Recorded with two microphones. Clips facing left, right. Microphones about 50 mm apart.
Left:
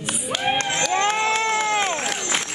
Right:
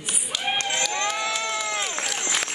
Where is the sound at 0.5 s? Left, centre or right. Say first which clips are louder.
Left 3 dB; left.